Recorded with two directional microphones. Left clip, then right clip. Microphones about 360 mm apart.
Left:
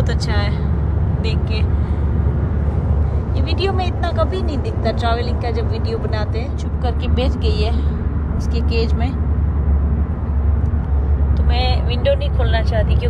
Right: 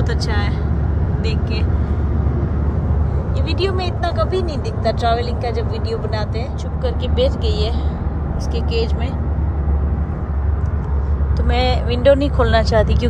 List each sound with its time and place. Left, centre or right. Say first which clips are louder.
0.1 s speech: even; centre
3.5 s speech: even; centre
6.8 s speech: right 4 dB; centre
11.6 s speech: right 5 dB; right